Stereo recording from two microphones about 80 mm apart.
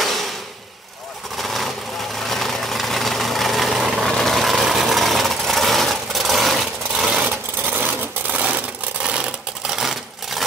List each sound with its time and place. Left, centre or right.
1.4 s vehicle: centre
7.7 s a sound: right
9.0 s sewing machine: centre
9.8 s sewing machine: centre